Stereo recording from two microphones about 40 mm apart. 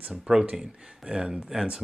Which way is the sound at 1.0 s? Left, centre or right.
Right.